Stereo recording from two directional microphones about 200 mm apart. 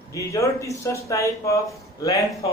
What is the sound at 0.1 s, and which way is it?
A man's voice, 15° left (ahead or behind).